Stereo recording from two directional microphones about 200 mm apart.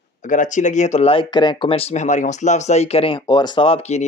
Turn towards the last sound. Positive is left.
turn(degrees=30)  # may be behind; listen again after turning